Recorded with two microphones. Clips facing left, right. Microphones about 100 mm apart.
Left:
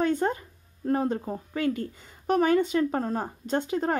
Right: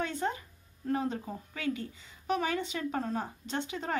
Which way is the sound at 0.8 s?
45° left (ahead or behind).